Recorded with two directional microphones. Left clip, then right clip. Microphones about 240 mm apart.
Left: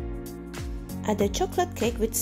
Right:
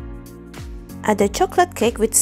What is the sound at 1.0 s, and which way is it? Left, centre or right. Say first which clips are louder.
A woman's voice: right 8 dB; right.